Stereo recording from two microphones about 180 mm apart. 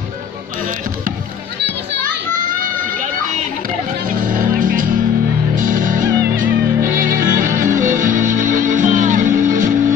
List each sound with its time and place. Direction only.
2.0 s children playing: 50° right (ahead or behind)
4.1 s music: 50° right (ahead or behind)